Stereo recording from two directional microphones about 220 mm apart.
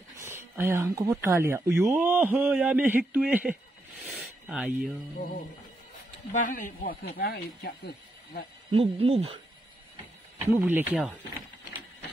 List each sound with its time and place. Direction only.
0.2 s a sound: 10° right (ahead or behind)
1.2 s a man's voice: 10° right (ahead or behind)
4.0 s a sound: 5° right (ahead or behind)
6.3 s speech: 35° left (ahead or behind)
8.7 s speech: 25° right (ahead or behind)
10.4 s a man's voice: 10° right (ahead or behind)